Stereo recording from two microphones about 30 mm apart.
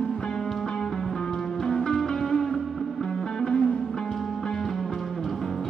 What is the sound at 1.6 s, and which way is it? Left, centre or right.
Music, centre.